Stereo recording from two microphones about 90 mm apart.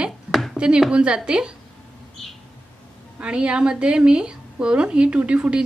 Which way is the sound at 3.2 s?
10° right (ahead or behind).